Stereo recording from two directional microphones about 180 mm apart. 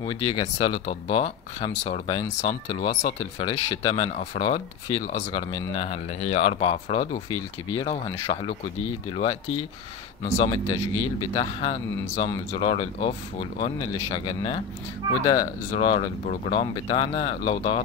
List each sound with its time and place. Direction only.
0.0 s speech: 30° left (ahead or behind)
3.3 s speech: 25° left (ahead or behind)
7.9 s speech: 35° left (ahead or behind)